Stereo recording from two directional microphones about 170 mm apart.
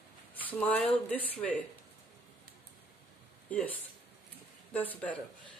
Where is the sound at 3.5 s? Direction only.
10° left (ahead or behind).